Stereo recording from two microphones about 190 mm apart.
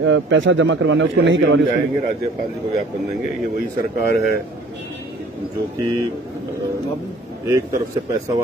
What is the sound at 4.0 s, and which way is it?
Speech, 55° left (ahead or behind).